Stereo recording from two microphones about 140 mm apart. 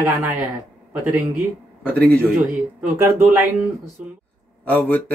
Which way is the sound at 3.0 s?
15° right (ahead or behind).